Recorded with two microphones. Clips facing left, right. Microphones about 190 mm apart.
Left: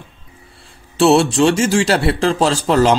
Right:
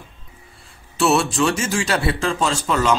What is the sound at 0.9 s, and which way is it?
A man's voice, 30° left (ahead or behind).